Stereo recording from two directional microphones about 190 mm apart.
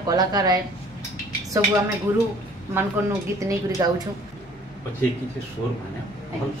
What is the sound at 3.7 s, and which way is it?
Speech, 20° right (ahead or behind).